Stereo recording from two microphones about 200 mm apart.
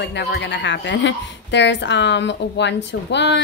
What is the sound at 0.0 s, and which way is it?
A woman's voice, 55° left (ahead or behind).